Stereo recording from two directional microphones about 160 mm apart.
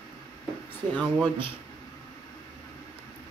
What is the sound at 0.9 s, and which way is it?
Speech, 10° left (ahead or behind).